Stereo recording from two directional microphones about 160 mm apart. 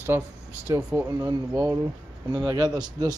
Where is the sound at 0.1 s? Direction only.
15° right (ahead or behind).